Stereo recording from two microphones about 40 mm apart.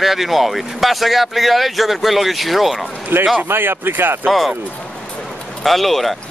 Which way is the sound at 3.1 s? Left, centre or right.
Right.